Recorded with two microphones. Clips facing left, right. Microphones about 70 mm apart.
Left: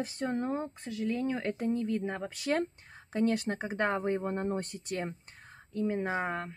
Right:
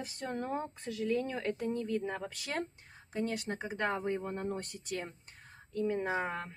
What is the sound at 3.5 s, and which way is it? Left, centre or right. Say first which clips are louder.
Speech: left 4 dB; left.